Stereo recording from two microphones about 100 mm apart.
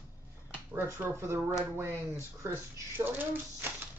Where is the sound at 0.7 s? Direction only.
25° right (ahead or behind).